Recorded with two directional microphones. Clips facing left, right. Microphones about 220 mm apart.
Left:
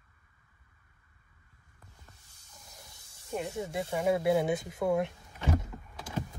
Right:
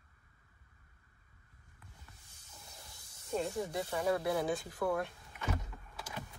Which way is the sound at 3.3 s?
20° left (ahead or behind).